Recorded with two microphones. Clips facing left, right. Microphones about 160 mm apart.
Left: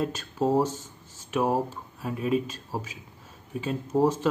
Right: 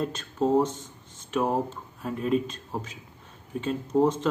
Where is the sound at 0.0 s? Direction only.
5° left (ahead or behind).